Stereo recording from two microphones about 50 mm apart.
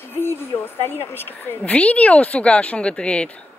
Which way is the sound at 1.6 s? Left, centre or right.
Left.